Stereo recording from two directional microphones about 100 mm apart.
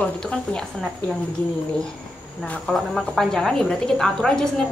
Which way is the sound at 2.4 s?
10° left (ahead or behind).